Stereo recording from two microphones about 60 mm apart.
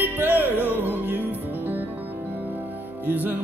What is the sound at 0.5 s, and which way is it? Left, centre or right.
Music, left.